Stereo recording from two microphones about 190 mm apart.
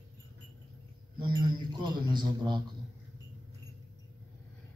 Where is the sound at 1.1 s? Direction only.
25° right (ahead or behind).